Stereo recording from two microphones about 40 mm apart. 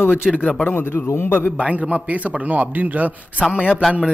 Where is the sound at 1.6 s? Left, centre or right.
Right.